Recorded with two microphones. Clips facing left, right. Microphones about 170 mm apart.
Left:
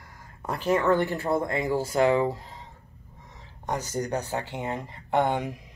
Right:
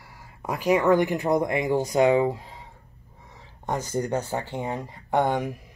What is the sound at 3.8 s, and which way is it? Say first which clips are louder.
Speech: right 4 dB; 15° right (ahead or behind).